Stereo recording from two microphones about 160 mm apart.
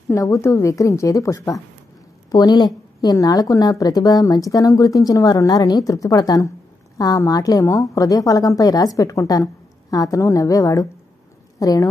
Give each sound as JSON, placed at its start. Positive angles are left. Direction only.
{"t": 0.1, "sound": "a woman's voice", "side_deg": 20}